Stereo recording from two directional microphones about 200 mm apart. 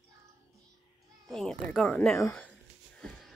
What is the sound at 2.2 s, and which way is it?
Speech, 5° left (ahead or behind).